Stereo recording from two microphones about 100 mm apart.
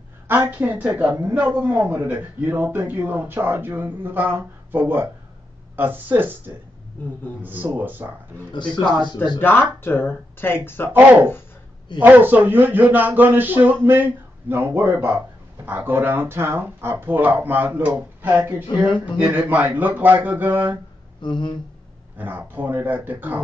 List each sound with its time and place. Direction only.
0.3 s a woman's voice: 20° right (ahead or behind)
9.1 s speech: 50° left (ahead or behind)
9.4 s speech: 20° left (ahead or behind)
10.9 s speech: 20° right (ahead or behind)
21.2 s speech: 50° left (ahead or behind)
22.1 s speech: 20° right (ahead or behind)